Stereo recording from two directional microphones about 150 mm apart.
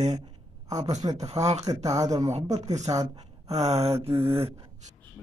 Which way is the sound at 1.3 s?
20° right (ahead or behind).